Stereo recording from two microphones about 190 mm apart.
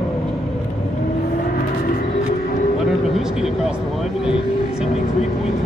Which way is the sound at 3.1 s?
Centre (ahead or behind).